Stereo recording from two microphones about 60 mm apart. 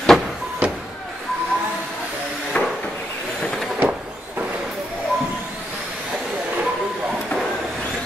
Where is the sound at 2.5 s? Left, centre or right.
Left.